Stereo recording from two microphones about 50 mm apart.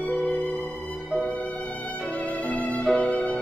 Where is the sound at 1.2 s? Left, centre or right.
Left.